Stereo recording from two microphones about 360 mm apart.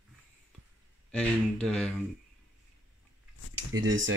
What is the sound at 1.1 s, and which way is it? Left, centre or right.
Speech, centre.